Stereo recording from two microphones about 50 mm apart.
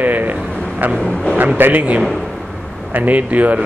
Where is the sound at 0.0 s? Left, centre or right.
Right.